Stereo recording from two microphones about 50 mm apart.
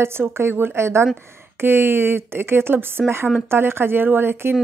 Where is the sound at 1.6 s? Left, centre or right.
Right.